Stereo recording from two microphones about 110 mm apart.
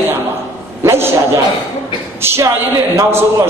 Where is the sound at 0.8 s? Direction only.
20° right (ahead or behind).